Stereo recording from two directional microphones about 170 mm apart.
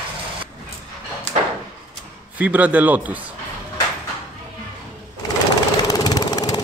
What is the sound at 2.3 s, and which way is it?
Speech, 10° right (ahead or behind).